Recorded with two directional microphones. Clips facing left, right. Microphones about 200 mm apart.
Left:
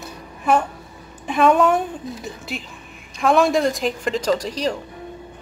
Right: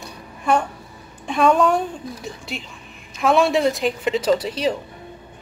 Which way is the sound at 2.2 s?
Centre (ahead or behind).